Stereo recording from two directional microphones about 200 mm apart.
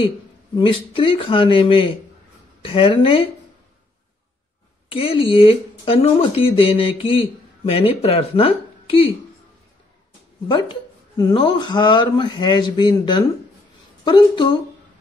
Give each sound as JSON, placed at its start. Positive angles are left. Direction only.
{"t": 0.9, "sound": "speech", "side_deg": 25}
{"t": 4.9, "sound": "speech", "side_deg": 30}
{"t": 11.1, "sound": "speech", "side_deg": 25}